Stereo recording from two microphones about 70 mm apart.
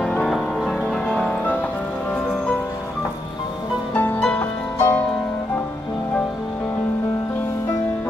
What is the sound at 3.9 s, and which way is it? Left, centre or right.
Music, left.